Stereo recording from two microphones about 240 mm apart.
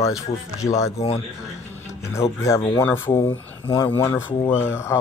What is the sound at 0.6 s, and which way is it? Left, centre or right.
Speech, centre.